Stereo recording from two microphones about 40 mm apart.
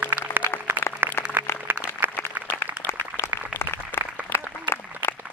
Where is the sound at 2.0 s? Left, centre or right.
Right.